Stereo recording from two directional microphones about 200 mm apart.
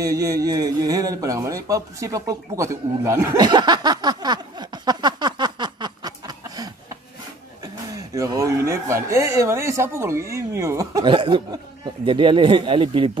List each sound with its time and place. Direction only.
0.0 s speech: 15° right (ahead or behind)
7.9 s chicken: 15° right (ahead or behind)
10.3 s speech: 15° right (ahead or behind)